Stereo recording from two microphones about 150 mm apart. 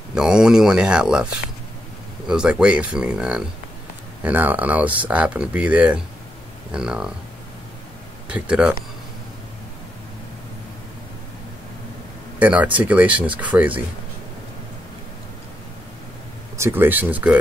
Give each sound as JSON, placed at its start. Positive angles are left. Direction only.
{"t": 0.1, "sound": "speech", "side_deg": -5}
{"t": 8.3, "sound": "speech", "side_deg": -10}
{"t": 12.4, "sound": "speech", "side_deg": -10}
{"t": 16.5, "sound": "speech", "side_deg": -15}